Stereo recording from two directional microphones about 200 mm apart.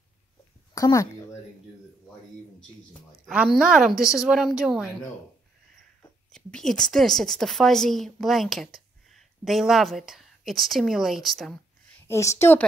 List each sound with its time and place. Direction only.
0.7 s speech: 15° left (ahead or behind)
3.3 s a woman's voice: 5° right (ahead or behind)
6.3 s a woman's voice: centre (ahead or behind)
12.1 s a woman's voice: 15° left (ahead or behind)